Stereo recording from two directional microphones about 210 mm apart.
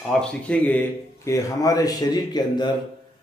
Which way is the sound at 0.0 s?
5° left (ahead or behind).